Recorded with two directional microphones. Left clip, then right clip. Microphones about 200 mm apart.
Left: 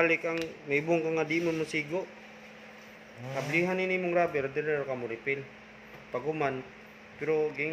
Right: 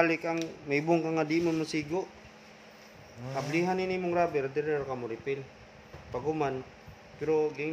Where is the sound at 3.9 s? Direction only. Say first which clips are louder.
Left 2 dB; 35° right (ahead or behind).